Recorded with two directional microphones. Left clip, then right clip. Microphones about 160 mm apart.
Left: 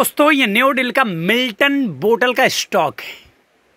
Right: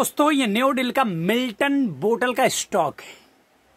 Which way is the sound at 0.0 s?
Centre (ahead or behind).